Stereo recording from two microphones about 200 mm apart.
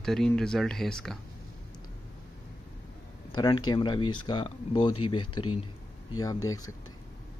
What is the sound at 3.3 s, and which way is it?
Speech, 25° left (ahead or behind).